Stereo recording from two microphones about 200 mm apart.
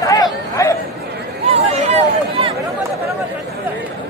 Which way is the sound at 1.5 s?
30° right (ahead or behind).